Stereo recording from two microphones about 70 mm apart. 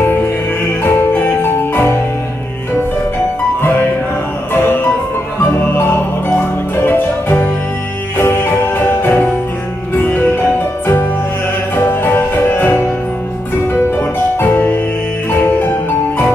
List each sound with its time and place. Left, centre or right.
0.0 s music: left
5.5 s music: left
9.9 s music: centre
11.7 s music: left